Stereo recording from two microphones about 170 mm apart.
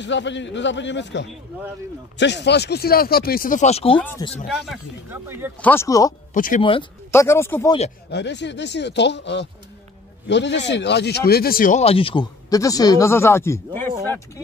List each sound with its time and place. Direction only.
0.0 s speech: 90° left; by 4.0 s 35° left (ahead or behind)
4.5 s speech: 5° right (ahead or behind)
5.6 s speech: 15° left (ahead or behind)
6.3 s speech: 50° left (ahead or behind)
6.6 s speech: 30° left (ahead or behind)
7.1 s speech: 15° left (ahead or behind)
8.1 s speech: 90° left; by 11.8 s 55° left (ahead or behind)
11.8 s speech: 35° left (ahead or behind); by 14.4 s 15° left (ahead or behind)